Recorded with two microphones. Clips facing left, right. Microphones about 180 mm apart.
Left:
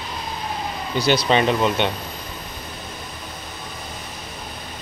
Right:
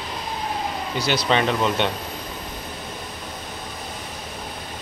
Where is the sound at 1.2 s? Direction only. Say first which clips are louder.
Left 2 dB; 15° left (ahead or behind).